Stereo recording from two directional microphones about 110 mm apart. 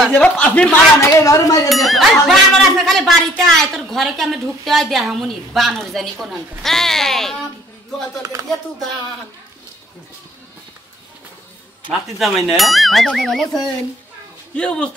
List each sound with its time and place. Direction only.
0.1 s speech: 15° left (ahead or behind)
1.0 s a woman's voice: 30° left (ahead or behind)
1.9 s speech: centre (ahead or behind)
8.2 s speech: 35° right (ahead or behind)
11.9 s speech: centre (ahead or behind)